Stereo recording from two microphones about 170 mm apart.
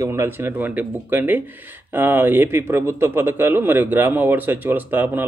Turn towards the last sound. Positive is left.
turn(degrees=-10)  # may be behind; listen again after turning